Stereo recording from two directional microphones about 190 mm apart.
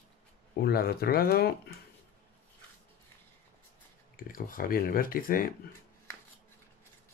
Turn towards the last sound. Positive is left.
turn(degrees=50)  # may be behind; listen again after turning